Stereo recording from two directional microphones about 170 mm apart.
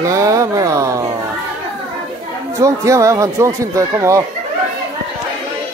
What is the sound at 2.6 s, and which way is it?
Speech, 20° right (ahead or behind).